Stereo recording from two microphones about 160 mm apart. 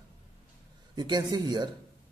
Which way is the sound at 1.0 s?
25° right (ahead or behind).